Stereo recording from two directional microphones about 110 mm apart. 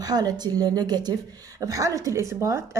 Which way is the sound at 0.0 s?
35° right (ahead or behind).